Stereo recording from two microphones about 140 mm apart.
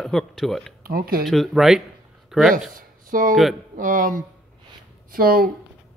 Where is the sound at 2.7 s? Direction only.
75° right (ahead or behind).